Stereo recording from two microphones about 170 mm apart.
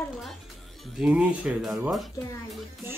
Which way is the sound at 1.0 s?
5° right (ahead or behind).